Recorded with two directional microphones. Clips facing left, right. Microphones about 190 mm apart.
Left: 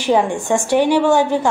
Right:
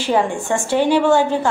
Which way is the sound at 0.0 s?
15° left (ahead or behind).